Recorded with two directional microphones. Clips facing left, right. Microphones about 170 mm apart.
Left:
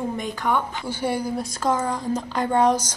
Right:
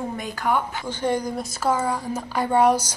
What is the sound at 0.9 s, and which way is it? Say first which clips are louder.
Speech: right 2 dB; 10° left (ahead or behind).